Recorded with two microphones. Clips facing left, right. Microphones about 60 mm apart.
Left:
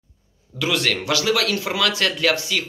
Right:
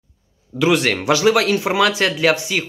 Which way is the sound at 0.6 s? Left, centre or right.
Right.